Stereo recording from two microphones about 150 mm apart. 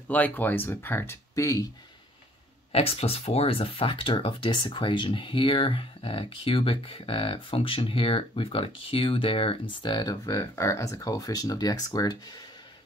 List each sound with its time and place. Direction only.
0.1 s speech: 10° left (ahead or behind)
2.7 s speech: 40° left (ahead or behind); by 12.4 s 25° left (ahead or behind)